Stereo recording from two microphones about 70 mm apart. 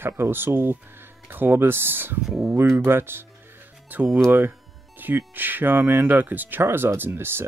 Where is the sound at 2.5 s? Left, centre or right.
Right.